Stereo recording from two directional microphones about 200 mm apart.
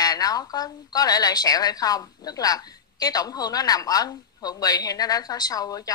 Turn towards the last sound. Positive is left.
turn(degrees=20)  # may be behind; listen again after turning